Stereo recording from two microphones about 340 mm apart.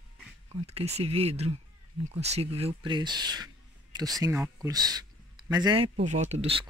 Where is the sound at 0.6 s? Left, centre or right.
Centre.